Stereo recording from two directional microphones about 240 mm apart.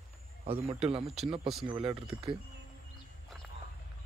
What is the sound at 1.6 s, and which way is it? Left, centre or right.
Speech, right.